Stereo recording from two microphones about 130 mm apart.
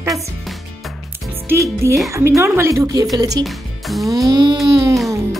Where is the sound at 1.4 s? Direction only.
20° right (ahead or behind).